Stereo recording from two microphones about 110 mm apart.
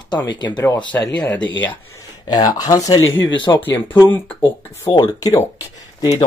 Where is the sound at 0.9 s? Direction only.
20° left (ahead or behind).